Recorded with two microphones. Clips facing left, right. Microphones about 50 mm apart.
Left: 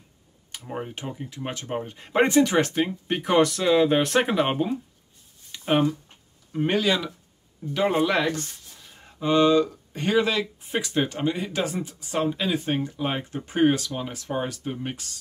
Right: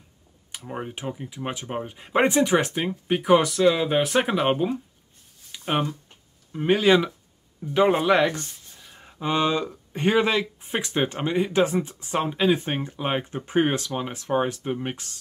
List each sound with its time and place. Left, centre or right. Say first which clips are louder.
0.7 s speech: right 1 dB; centre
1.3 s speech: left 2 dB; centre
5.5 s a sound: left 3 dB; centre
6.8 s speech: right 5 dB; right
8.8 s a sound: right 2 dB; centre
9.2 s speech: left 4 dB; right